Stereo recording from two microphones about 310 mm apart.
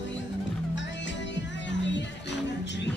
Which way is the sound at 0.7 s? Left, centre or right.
Left.